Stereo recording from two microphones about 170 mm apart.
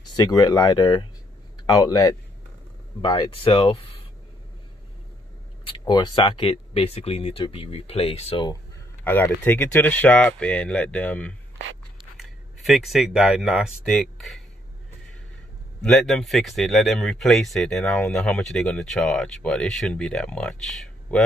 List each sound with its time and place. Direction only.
0.1 s speech: 25° left (ahead or behind)
5.6 s speech: 30° left (ahead or behind)
9.0 s speech: 10° left (ahead or behind)
15.8 s speech: 5° left (ahead or behind)